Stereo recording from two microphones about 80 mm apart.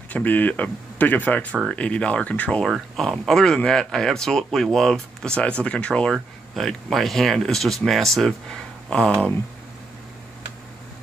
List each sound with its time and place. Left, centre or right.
0.1 s speech: left
2.6 s speech: centre